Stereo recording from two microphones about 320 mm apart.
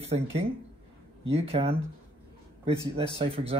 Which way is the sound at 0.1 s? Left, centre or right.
Right.